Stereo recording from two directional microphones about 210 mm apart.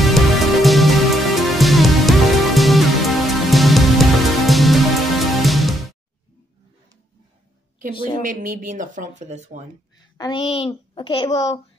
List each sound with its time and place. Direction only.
0.0 s music: centre (ahead or behind)
7.9 s a child's voice: 25° left (ahead or behind)
8.2 s speech: 40° right (ahead or behind)
10.1 s a child's voice: 20° left (ahead or behind)